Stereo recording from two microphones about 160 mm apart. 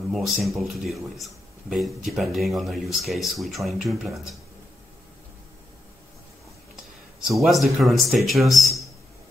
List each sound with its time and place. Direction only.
0.1 s speech: centre (ahead or behind)
7.2 s speech: centre (ahead or behind)